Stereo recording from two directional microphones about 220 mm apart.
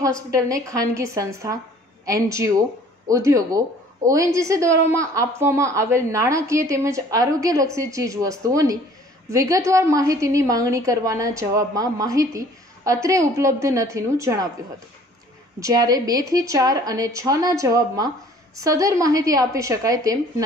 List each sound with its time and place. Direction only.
0.0 s a woman's voice: 15° right (ahead or behind)
15.6 s a woman's voice: 15° right (ahead or behind)